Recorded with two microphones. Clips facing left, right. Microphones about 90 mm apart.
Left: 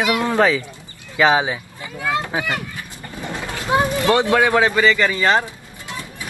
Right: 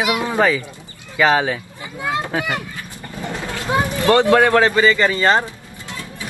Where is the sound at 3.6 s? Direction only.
20° left (ahead or behind).